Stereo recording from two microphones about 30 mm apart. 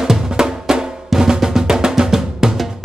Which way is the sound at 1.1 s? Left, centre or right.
Centre.